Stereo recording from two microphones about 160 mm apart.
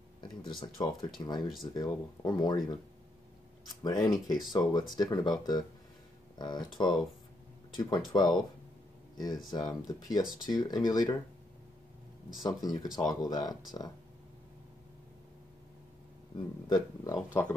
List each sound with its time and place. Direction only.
0.7 s speech: 25° left (ahead or behind)
3.8 s speech: 25° left (ahead or behind)
12.4 s speech: 25° left (ahead or behind)
16.3 s speech: 25° left (ahead or behind)